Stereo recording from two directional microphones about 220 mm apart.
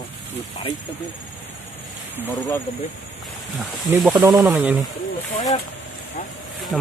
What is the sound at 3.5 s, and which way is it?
Speech, centre (ahead or behind).